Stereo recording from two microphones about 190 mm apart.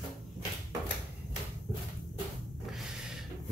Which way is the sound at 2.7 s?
Centre (ahead or behind).